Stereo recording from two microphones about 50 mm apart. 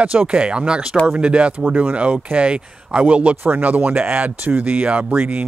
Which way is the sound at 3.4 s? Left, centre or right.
Right.